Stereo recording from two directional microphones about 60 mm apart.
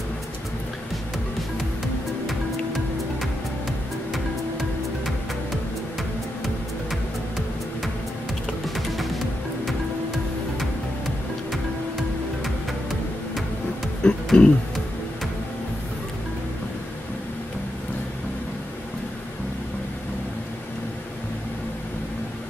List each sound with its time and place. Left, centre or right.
6.4 s music: centre
14.0 s music: centre